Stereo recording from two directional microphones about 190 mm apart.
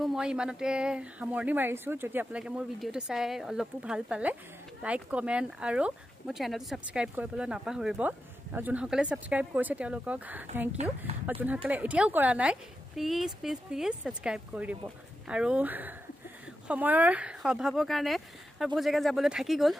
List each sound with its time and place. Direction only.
0.0 s speech: 5° right (ahead or behind)
11.1 s speech: 30° right (ahead or behind)
11.4 s speech: 10° right (ahead or behind)